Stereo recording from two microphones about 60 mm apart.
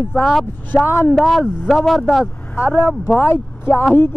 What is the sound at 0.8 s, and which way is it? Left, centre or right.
Speech, left.